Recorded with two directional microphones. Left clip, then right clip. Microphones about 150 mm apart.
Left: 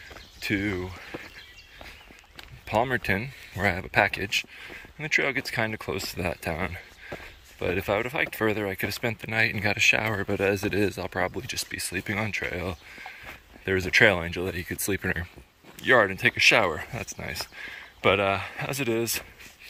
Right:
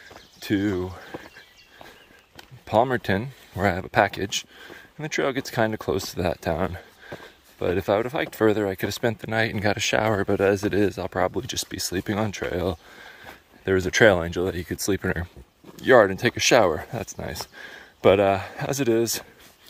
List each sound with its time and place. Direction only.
0.4 s speech: 40° right (ahead or behind)
0.9 s a sound: 40° right (ahead or behind)
2.6 s speech: 35° right (ahead or behind)
11.3 s speech: 50° right (ahead or behind); by 15.2 s 30° right (ahead or behind)
15.8 s speech: 45° right (ahead or behind)
17.6 s speech: 55° right (ahead or behind)